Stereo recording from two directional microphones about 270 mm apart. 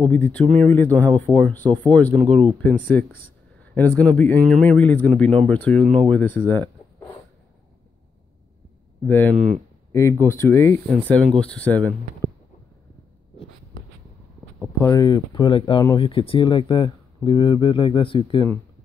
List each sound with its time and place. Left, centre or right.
0.0 s speech: centre
9.0 s speech: centre
14.8 s speech: centre